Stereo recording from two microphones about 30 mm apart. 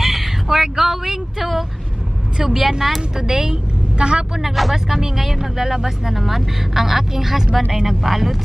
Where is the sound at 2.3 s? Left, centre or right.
Centre.